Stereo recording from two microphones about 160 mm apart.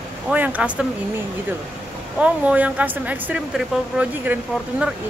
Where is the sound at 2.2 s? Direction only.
10° right (ahead or behind).